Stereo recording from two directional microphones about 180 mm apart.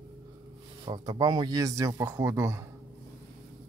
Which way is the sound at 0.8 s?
25° right (ahead or behind).